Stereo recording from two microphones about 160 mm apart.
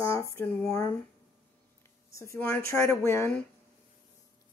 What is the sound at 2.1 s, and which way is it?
Speech, 20° left (ahead or behind).